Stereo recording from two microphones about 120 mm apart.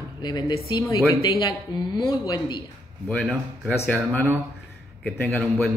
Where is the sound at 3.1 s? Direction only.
5° left (ahead or behind).